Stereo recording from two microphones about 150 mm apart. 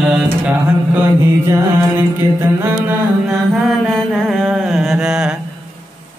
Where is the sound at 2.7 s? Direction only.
10° right (ahead or behind).